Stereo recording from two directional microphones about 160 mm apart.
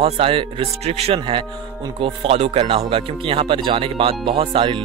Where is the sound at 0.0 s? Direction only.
35° right (ahead or behind).